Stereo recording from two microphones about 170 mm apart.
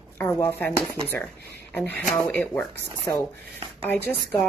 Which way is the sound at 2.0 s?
Centre (ahead or behind).